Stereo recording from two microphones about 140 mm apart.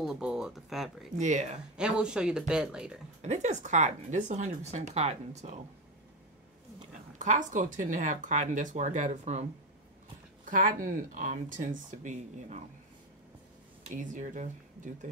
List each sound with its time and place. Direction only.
0.0 s speech: 5° right (ahead or behind)
1.1 s speech: 60° right (ahead or behind)
1.8 s speech: 5° right (ahead or behind)
3.2 s speech: 55° right (ahead or behind)
7.2 s speech: 65° right (ahead or behind)
10.4 s speech: 70° right (ahead or behind)
13.8 s speech: 65° right (ahead or behind)